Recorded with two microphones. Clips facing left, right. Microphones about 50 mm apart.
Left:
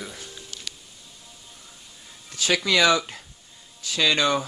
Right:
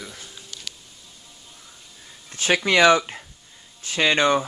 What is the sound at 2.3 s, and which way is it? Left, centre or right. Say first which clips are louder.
Speech: right 2 dB; right.